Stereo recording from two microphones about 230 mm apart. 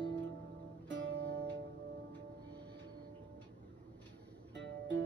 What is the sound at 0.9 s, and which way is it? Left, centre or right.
Music, right.